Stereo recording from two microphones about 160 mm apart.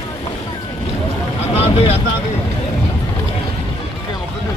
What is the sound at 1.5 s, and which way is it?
Vehicle, 35° left (ahead or behind).